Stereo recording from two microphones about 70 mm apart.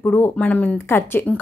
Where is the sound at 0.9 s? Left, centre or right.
Left.